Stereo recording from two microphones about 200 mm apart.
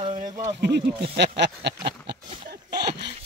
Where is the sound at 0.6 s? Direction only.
60° right (ahead or behind).